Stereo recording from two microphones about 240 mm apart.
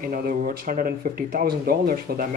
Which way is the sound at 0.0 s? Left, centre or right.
Right.